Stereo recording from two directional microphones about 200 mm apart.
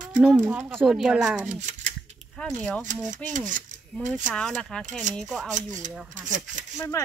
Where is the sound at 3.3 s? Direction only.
40° right (ahead or behind).